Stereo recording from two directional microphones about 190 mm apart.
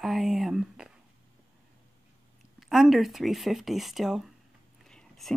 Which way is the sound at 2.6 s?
Centre (ahead or behind).